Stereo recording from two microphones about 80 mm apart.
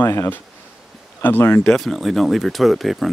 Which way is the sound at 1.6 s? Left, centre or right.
Centre.